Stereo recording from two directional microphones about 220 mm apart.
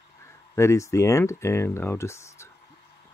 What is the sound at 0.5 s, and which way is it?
Speech, 15° left (ahead or behind).